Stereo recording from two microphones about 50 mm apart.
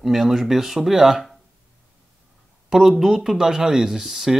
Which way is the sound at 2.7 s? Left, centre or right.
Centre.